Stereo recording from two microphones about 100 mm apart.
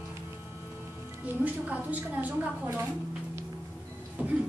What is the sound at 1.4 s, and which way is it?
A woman's voice, 15° right (ahead or behind).